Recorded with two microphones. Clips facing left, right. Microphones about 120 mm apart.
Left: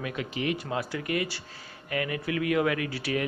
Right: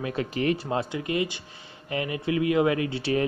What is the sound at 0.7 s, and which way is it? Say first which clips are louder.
Speech: right 3 dB; 25° right (ahead or behind).